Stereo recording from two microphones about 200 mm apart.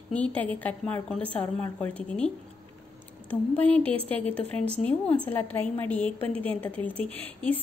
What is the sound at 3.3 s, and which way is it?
A woman's voice, 5° left (ahead or behind).